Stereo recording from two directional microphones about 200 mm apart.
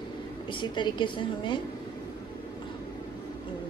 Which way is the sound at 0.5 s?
25° left (ahead or behind).